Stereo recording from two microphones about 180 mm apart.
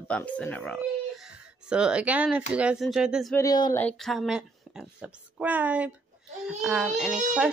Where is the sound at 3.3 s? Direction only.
20° left (ahead or behind).